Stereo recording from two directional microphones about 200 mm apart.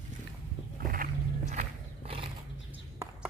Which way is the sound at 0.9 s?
40° right (ahead or behind).